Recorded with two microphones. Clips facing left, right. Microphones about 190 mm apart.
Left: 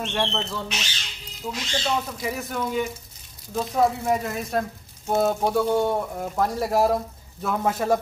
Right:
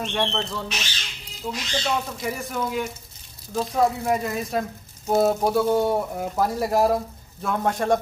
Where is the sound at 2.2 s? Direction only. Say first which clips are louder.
Even; centre (ahead or behind).